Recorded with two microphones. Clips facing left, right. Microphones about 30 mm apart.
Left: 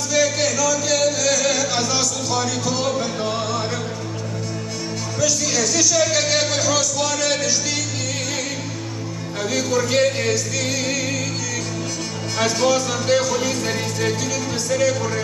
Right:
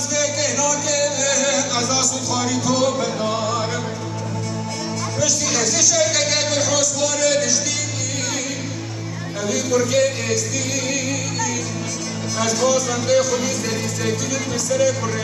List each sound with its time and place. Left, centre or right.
0.1 s music: left
1.9 s speech: centre
5.2 s speech: centre
9.5 s music: left
12.4 s music: left
14.7 s music: left